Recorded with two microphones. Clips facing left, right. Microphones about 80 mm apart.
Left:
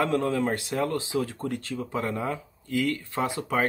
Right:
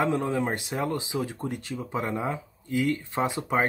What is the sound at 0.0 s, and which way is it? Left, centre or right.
Speech, right.